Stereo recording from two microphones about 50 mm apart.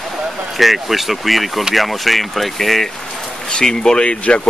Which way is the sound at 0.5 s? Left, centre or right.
Centre.